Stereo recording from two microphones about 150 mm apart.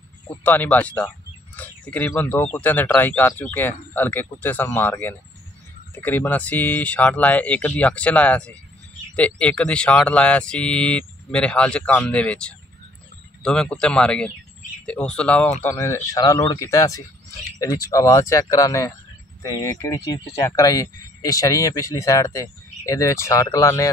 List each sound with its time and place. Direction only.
0.4 s speech: 10° left (ahead or behind)
15.6 s speech: 20° left (ahead or behind)